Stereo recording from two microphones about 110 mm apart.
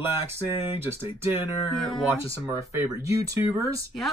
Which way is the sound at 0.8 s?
25° right (ahead or behind).